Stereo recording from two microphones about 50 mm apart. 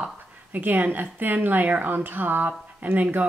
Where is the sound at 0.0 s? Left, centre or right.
Right.